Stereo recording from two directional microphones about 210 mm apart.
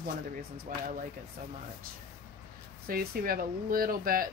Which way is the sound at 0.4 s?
40° right (ahead or behind).